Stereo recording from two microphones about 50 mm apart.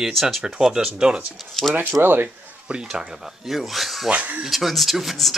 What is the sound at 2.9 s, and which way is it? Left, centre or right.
Speech, centre.